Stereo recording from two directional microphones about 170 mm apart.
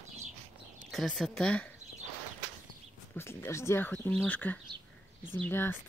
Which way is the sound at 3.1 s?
15° left (ahead or behind).